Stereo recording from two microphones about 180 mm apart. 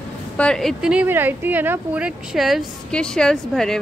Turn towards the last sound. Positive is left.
turn(degrees=5)  # may be behind; listen again after turning